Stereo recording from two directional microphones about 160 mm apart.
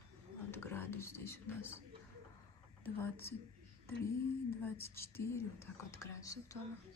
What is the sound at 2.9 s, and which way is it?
Speech, 15° left (ahead or behind).